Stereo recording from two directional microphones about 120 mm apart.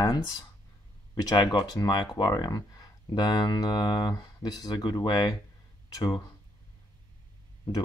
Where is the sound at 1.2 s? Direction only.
35° left (ahead or behind).